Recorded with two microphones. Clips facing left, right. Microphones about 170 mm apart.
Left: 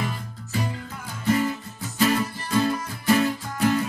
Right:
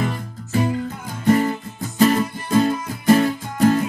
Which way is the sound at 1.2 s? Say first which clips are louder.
Right 6 dB; 45° right (ahead or behind).